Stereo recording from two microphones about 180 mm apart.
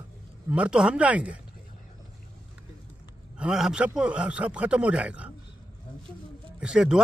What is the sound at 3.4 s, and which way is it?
A man's voice, 5° right (ahead or behind).